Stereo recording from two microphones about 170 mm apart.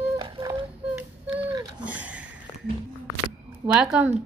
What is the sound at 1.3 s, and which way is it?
Speech, 25° right (ahead or behind).